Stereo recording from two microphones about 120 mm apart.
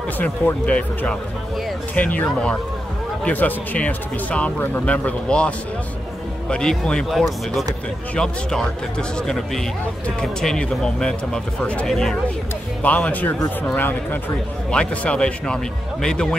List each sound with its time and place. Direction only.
0.2 s speech: 10° left (ahead or behind)
6.5 s speech: 5° left (ahead or behind)